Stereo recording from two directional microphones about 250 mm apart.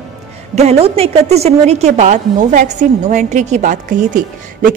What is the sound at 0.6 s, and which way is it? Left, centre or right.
A woman's voice, right.